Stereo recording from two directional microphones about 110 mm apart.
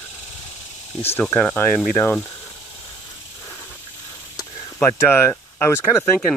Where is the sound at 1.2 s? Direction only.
10° left (ahead or behind).